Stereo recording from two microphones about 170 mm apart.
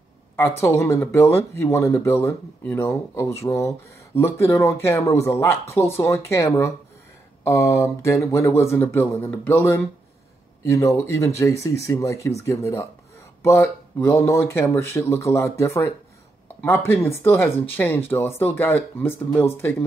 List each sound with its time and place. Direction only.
0.4 s speech: 15° left (ahead or behind)